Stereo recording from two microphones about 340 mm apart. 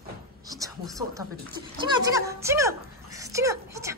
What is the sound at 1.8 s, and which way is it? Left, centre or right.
A woman's voice, centre.